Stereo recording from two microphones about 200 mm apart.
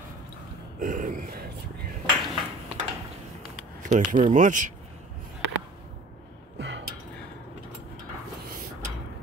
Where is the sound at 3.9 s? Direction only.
40° right (ahead or behind).